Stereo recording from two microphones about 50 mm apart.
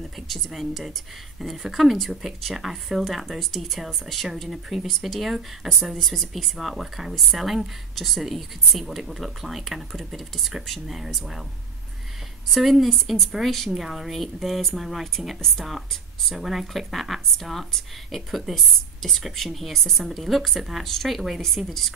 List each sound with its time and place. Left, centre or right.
0.3 s a woman's voice: centre
12.4 s a woman's voice: centre